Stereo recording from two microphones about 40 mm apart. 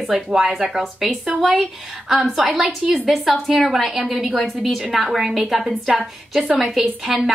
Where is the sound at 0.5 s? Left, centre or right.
Centre.